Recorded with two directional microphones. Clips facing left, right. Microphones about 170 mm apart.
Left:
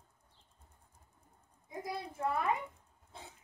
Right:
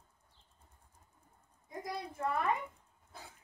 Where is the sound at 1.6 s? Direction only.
5° left (ahead or behind).